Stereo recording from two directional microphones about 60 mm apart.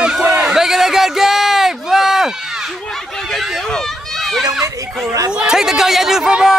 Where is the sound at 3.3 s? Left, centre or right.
Centre.